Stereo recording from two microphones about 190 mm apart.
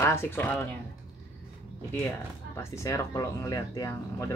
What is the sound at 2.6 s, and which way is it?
Speech, 15° left (ahead or behind).